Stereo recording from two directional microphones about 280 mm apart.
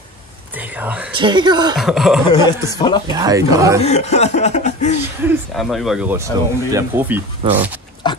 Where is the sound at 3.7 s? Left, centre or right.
Left.